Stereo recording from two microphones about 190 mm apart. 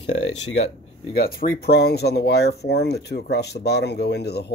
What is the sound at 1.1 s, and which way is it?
Speech, 50° left (ahead or behind).